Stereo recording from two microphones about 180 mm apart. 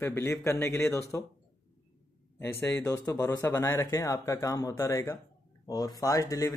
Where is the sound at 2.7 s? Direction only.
20° left (ahead or behind).